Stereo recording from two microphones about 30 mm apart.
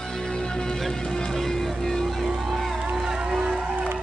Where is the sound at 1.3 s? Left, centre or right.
Centre.